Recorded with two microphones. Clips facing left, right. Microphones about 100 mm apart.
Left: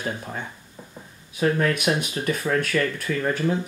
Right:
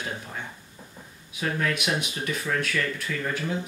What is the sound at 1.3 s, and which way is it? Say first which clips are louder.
Speech: left 6 dB; 40° left (ahead or behind).